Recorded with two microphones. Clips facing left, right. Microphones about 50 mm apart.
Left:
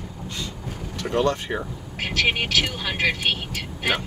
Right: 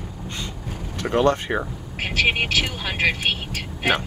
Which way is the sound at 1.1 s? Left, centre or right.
Right.